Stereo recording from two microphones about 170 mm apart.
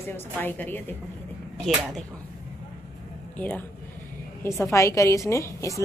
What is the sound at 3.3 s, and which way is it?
Speech, 10° left (ahead or behind).